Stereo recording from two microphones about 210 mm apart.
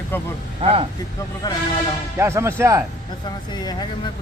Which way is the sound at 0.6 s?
30° right (ahead or behind).